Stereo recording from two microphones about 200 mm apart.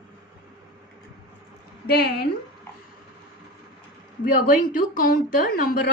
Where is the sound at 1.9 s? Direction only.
50° left (ahead or behind).